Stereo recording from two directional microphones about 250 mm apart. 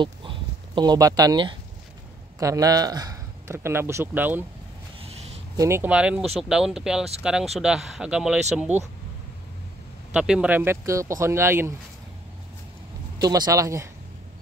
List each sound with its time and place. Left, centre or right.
0.0 s a sound: centre
2.3 s a man's voice: centre
5.6 s speech: centre
10.1 s speech: centre
13.2 s speech: centre